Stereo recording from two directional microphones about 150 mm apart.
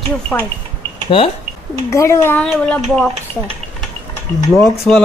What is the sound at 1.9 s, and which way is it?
Speech, 20° left (ahead or behind).